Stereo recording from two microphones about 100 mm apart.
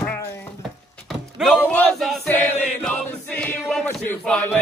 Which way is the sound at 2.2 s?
20° left (ahead or behind).